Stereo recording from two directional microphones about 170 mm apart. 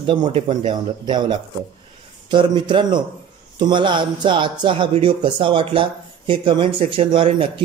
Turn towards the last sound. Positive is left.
turn(degrees=-30)  # may be behind; listen again after turning